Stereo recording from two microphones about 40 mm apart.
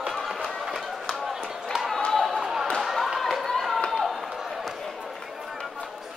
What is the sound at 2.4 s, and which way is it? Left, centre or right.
Basketball bounce, centre.